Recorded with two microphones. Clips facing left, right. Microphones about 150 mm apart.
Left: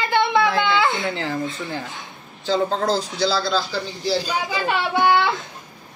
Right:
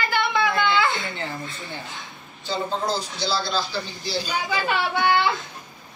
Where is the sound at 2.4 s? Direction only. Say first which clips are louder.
Left 5 dB; 90° left.